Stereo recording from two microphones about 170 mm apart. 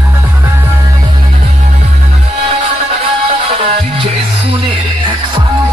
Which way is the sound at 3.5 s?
40° right (ahead or behind).